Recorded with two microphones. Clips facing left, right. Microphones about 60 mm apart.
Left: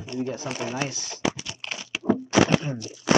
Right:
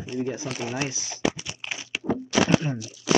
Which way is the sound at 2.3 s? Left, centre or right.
Left.